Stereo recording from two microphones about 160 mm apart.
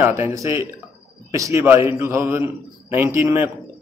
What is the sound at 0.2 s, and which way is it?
A man's voice, 15° right (ahead or behind).